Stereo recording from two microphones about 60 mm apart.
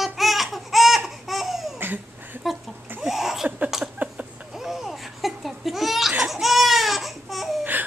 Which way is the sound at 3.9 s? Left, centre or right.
Centre.